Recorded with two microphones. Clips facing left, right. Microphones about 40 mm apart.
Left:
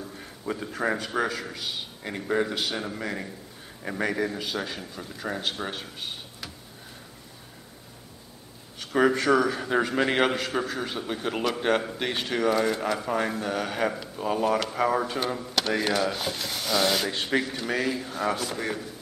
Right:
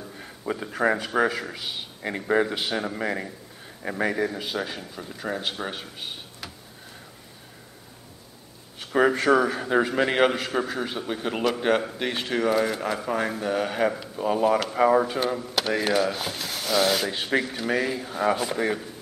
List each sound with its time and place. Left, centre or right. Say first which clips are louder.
0.2 s a man's voice: right 3 dB; centre
8.9 s a man's voice: right 2 dB; centre